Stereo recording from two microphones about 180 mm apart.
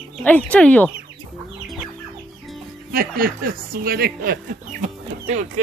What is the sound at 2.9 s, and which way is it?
Speech, 55° right (ahead or behind).